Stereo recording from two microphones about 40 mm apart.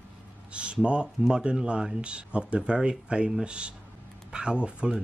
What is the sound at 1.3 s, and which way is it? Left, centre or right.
Speech, centre.